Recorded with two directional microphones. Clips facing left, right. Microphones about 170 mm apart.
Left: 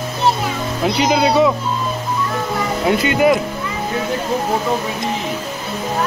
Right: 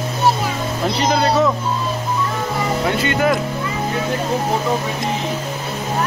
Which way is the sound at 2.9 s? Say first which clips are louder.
Left 5 dB; 15° left (ahead or behind).